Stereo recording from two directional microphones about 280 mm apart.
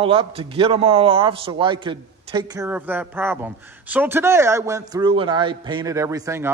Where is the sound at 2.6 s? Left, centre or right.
Centre.